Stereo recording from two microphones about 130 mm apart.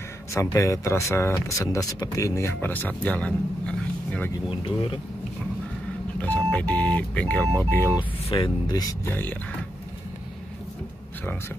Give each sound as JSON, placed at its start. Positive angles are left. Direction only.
{"t": 0.3, "sound": "speech", "side_deg": 20}
{"t": 6.1, "sound": "speech", "side_deg": 10}
{"t": 8.0, "sound": "speech", "side_deg": 45}
{"t": 8.6, "sound": "speech", "side_deg": 30}
{"t": 9.1, "sound": "speech", "side_deg": 15}